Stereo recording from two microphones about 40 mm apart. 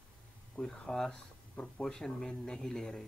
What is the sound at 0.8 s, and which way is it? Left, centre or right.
Speech, centre.